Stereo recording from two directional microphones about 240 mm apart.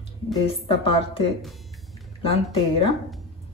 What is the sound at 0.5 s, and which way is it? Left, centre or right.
Speech, left.